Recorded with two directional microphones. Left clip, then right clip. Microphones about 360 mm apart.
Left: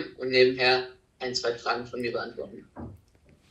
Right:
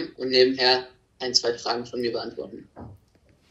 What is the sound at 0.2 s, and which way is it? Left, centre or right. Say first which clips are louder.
Speech: right 2 dB; right.